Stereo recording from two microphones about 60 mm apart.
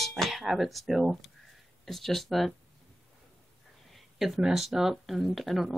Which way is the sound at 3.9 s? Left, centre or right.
Centre.